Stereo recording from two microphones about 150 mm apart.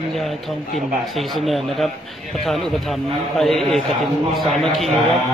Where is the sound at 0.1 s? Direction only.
Centre (ahead or behind).